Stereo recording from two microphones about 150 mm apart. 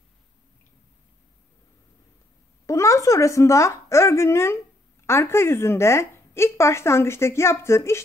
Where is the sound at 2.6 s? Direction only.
20° left (ahead or behind).